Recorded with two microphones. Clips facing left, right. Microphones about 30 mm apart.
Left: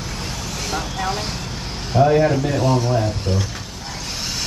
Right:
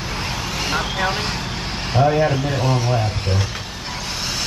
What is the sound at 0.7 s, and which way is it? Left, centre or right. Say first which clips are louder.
Speech: right 3 dB; right.